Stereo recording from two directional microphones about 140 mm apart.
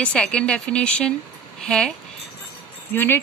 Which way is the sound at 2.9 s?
15° left (ahead or behind).